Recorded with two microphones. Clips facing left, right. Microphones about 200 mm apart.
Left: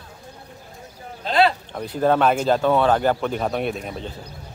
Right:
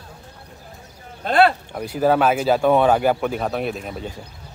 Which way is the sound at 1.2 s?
55° right (ahead or behind).